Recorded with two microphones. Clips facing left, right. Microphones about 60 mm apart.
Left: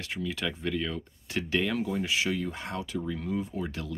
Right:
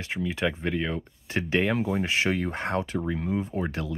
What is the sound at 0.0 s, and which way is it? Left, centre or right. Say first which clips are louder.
Speech: right 5 dB; right.